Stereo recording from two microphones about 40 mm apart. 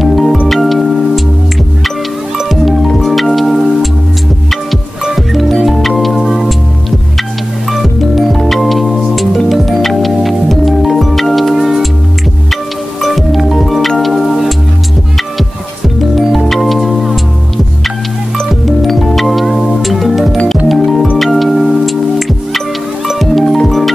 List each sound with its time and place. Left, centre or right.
0.0 s music: centre
2.3 s music: centre
5.0 s music: centre
7.7 s music: centre
13.0 s music: centre
16.0 s music: centre
18.5 s music: centre
23.0 s music: centre